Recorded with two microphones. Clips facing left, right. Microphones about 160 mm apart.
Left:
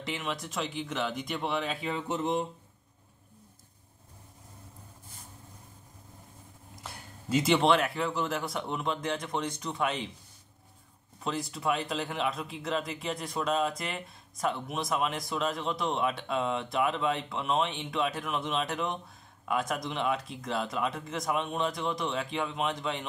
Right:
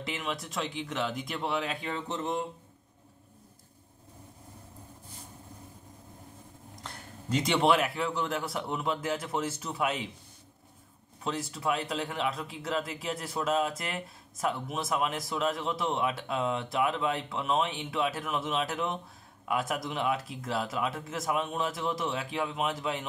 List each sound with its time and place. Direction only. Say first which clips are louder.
0.0 s speech: even; centre (ahead or behind)
2.0 s a sound: left 3 dB; 15° left (ahead or behind)
6.7 s speech: even; 5° left (ahead or behind)
11.2 s speech: left 1 dB; centre (ahead or behind)